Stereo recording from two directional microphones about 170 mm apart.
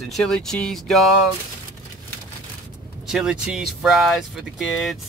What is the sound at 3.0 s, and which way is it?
Speech, 5° right (ahead or behind).